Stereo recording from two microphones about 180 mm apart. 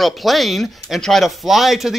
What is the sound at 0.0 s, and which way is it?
Speech, centre (ahead or behind).